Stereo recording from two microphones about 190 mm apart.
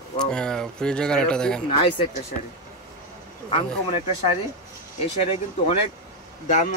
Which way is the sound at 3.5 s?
30° left (ahead or behind).